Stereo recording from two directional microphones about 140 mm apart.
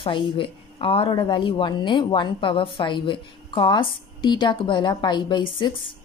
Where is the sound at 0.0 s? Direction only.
35° left (ahead or behind).